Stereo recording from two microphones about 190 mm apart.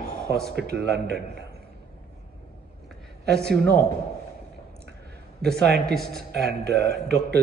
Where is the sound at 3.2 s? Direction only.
60° right (ahead or behind).